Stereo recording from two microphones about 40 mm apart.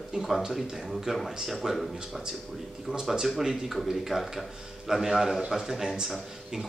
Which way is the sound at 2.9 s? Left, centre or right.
Right.